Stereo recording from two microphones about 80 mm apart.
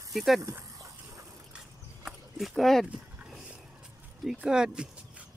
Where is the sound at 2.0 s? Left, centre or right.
Centre.